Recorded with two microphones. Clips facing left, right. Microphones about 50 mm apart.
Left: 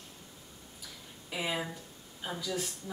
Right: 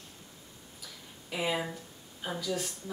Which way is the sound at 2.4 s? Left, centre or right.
Centre.